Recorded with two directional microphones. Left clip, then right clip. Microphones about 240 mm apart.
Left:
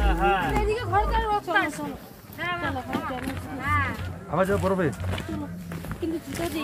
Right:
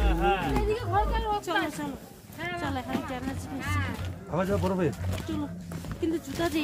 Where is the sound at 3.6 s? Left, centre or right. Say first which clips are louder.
Left 9 dB; centre.